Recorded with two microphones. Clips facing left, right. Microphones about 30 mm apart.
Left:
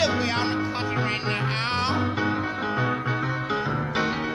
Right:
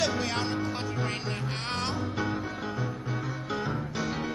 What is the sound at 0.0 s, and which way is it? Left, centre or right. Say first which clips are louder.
Music: left 5 dB; left.